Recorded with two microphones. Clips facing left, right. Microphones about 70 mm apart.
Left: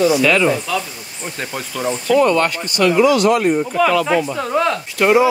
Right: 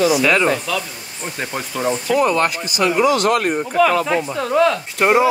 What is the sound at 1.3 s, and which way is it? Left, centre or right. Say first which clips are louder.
Speech: right 1 dB; centre.